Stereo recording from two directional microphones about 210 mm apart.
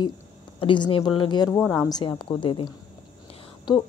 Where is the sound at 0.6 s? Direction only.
25° left (ahead or behind).